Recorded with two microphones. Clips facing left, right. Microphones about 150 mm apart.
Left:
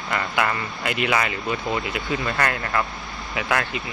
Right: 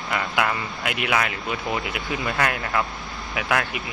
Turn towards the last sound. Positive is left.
turn(degrees=-5)  # may be behind; listen again after turning